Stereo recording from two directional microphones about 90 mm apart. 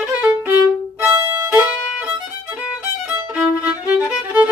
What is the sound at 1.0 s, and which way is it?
Violin, 25° right (ahead or behind).